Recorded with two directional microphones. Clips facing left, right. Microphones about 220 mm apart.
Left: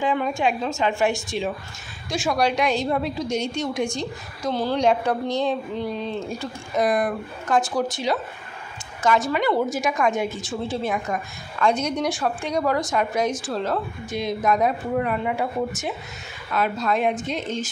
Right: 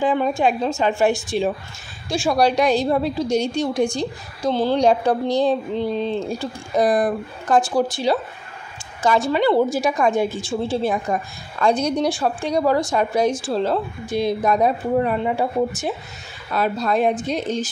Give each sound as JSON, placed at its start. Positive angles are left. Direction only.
{"t": 0.0, "sound": "a woman's voice", "side_deg": -35}